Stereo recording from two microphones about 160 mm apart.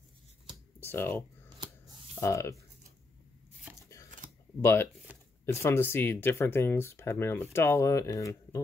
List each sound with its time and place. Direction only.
0.7 s a sound: 15° left (ahead or behind)
2.1 s speech: 20° left (ahead or behind)
4.6 s speech: 15° left (ahead or behind)